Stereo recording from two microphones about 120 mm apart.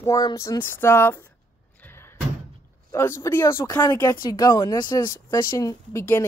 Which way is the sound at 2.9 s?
20° left (ahead or behind).